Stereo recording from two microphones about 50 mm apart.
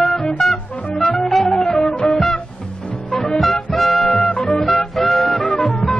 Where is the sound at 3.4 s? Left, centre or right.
Centre.